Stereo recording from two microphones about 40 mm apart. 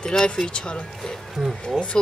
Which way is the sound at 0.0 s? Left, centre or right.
Centre.